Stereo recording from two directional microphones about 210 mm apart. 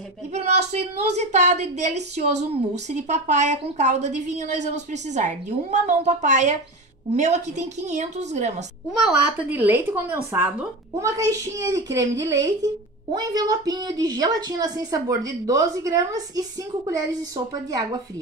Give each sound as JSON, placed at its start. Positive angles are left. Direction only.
{"t": 0.3, "sound": "a woman's voice", "side_deg": -30}
{"t": 9.0, "sound": "a woman's voice", "side_deg": -5}